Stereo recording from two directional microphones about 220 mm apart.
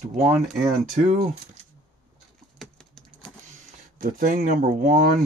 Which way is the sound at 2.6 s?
Centre (ahead or behind).